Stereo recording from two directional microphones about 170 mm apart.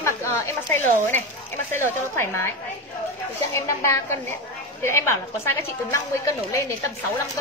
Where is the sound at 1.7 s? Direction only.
15° left (ahead or behind).